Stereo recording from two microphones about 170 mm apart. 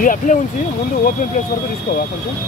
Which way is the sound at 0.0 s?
50° left (ahead or behind).